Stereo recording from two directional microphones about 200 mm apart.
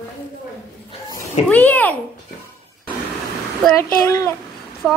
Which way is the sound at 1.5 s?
10° left (ahead or behind).